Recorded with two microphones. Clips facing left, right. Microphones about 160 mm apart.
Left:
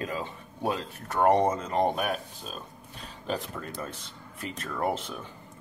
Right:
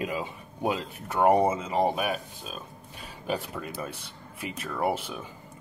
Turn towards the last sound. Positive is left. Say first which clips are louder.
# right 1 dB
turn(degrees=-10)  # may be behind; listen again after turning